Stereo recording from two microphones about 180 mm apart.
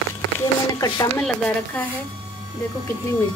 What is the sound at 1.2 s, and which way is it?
Speech, 10° left (ahead or behind).